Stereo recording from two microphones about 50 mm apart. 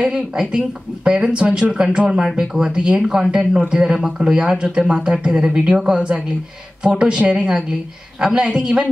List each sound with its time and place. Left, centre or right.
0.0 s speech: centre
2.7 s a woman's voice: centre